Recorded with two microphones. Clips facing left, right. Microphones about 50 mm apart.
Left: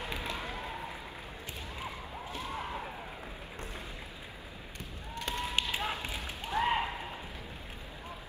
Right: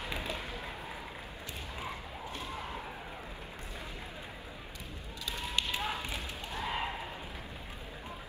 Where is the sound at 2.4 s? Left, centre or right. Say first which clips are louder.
Left 4 dB; left.